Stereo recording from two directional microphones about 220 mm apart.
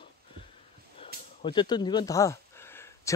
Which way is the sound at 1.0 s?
25° left (ahead or behind).